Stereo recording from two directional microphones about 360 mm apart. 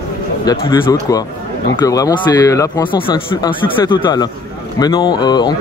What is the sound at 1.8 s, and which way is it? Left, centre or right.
Speech, centre.